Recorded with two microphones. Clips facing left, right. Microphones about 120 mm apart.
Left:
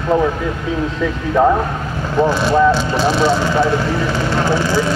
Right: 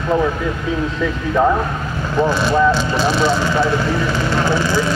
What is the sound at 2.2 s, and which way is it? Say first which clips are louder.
Speech: left 2 dB; 30° left (ahead or behind).